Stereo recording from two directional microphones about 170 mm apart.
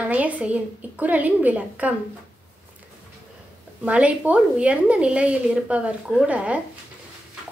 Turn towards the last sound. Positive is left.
turn(degrees=-5)  # may be behind; listen again after turning